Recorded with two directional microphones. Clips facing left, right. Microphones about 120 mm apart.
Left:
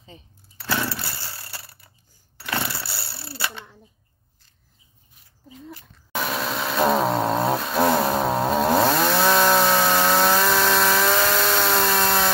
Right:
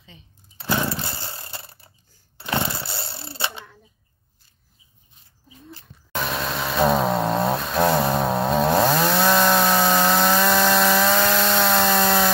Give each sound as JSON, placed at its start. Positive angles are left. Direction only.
{"t": 0.6, "sound": "chainsaw", "side_deg": -20}
{"t": 2.3, "sound": "a sound", "side_deg": -20}
{"t": 6.1, "sound": "chainsaw", "side_deg": 5}